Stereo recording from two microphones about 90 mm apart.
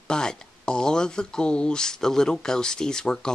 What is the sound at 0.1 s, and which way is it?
Speech, 10° left (ahead or behind).